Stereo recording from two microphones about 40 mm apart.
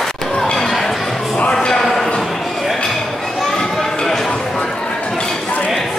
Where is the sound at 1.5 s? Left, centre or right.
Centre.